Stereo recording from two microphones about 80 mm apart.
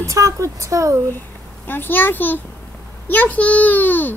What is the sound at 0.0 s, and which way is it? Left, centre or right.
Speech, right.